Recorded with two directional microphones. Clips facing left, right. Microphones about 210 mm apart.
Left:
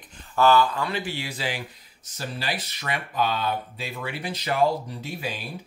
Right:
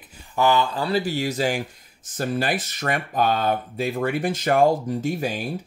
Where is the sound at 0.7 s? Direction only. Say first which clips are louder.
Right 6 dB; 35° right (ahead or behind).